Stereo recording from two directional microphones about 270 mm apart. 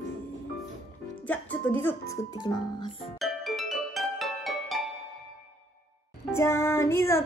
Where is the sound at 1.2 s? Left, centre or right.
Centre.